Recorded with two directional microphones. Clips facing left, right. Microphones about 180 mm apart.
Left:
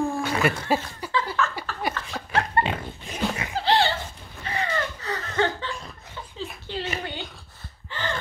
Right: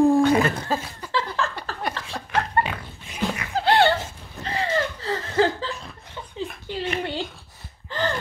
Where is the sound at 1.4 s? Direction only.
30° right (ahead or behind).